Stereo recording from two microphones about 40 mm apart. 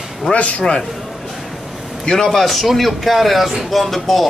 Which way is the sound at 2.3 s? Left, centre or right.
Centre.